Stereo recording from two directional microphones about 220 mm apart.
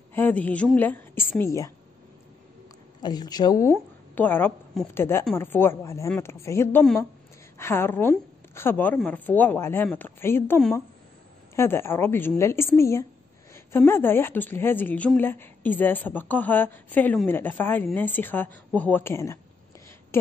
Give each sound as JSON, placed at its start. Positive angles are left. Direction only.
{"t": 0.1, "sound": "speech", "side_deg": 5}
{"t": 3.0, "sound": "speech", "side_deg": 20}